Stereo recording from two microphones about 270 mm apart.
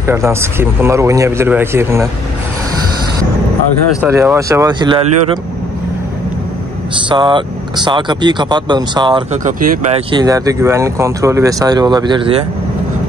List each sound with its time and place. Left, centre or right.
0.0 s speech: centre
4.0 s speech: centre
7.1 s speech: centre
10.1 s speech: centre